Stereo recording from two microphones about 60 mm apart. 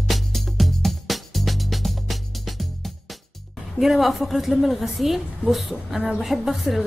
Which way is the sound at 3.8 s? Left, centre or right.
Centre.